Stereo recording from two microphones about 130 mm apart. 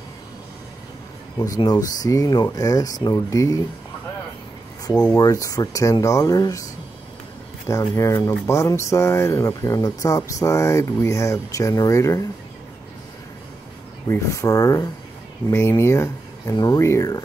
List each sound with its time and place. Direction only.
1.4 s speech: 30° left (ahead or behind)
5.1 s speech: 25° left (ahead or behind)
14.0 s speech: 20° left (ahead or behind)